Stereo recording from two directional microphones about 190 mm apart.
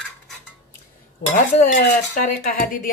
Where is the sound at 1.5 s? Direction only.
45° left (ahead or behind).